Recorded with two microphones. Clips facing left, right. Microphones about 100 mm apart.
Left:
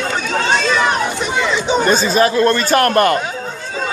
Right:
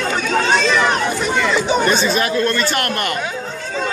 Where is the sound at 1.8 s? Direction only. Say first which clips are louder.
Left 3 dB; 40° left (ahead or behind).